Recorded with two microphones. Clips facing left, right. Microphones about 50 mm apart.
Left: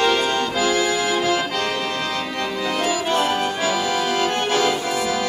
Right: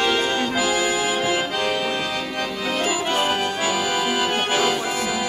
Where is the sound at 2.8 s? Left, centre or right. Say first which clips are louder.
Left 1 dB; right.